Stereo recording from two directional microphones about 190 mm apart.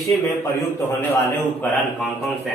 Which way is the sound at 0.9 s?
10° left (ahead or behind).